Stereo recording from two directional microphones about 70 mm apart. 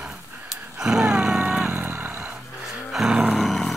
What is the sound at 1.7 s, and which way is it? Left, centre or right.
Vehicle, right.